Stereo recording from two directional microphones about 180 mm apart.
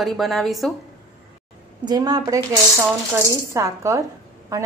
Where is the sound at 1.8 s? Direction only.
20° right (ahead or behind).